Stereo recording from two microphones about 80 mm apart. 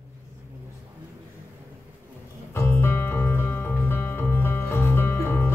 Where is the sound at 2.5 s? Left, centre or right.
Left.